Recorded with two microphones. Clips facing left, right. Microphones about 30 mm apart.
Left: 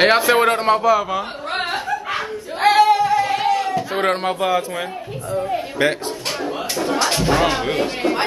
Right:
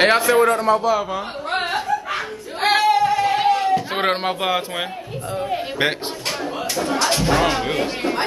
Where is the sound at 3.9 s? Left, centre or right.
Centre.